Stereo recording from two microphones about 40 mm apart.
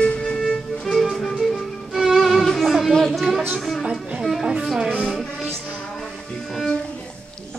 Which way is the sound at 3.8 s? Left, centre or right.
Centre.